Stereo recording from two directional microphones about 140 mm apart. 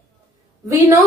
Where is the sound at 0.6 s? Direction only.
20° right (ahead or behind).